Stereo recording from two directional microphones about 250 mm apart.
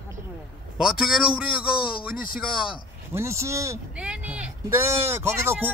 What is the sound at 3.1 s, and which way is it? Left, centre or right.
Speech, centre.